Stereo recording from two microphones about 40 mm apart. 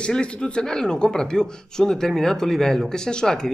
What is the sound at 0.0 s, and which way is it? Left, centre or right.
A man's voice, left.